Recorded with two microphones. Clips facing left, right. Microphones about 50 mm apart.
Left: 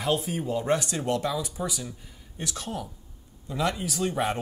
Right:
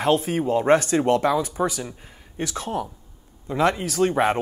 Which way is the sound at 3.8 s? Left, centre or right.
Right.